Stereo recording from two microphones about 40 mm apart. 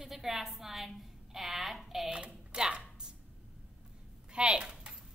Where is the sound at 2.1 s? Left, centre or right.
Right.